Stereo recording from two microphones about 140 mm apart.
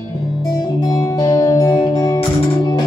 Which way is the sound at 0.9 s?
25° left (ahead or behind).